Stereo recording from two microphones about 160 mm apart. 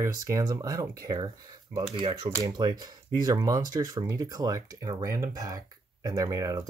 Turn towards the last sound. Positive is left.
turn(degrees=-20)  # may be behind; listen again after turning